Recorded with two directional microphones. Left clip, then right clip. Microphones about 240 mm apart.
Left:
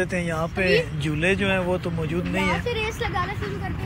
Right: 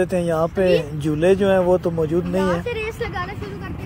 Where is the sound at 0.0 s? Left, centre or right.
Right.